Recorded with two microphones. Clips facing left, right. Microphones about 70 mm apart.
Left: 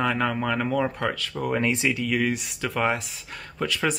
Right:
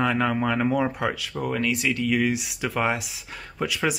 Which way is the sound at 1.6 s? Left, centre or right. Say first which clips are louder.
Left 1 dB; left.